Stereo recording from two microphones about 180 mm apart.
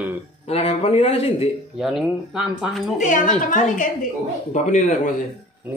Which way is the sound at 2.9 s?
45° left (ahead or behind).